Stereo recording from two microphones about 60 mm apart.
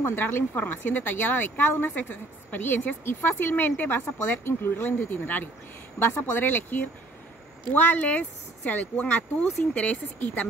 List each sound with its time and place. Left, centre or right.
0.0 s speech: left
5.9 s speech: left